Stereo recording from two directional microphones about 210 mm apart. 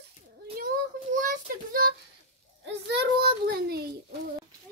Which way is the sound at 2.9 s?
50° right (ahead or behind).